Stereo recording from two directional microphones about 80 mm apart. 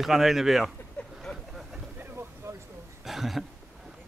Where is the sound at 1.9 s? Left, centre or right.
Right.